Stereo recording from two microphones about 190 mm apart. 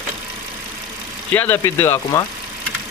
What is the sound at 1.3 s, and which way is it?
Speech, 10° left (ahead or behind).